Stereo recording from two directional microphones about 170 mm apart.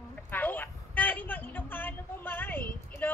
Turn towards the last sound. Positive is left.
turn(degrees=10)  # may be behind; listen again after turning